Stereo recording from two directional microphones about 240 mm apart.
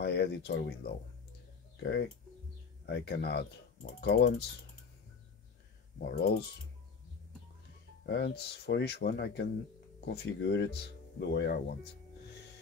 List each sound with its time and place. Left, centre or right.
0.0 s speech: left
5.9 s speech: left
8.0 s speech: left